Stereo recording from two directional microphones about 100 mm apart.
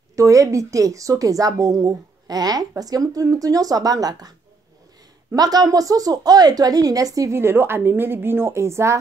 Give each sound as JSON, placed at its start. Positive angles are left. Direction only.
{"t": 0.1, "sound": "speech", "side_deg": -35}
{"t": 5.3, "sound": "speech", "side_deg": -40}
{"t": 7.3, "sound": "a woman's voice", "side_deg": -25}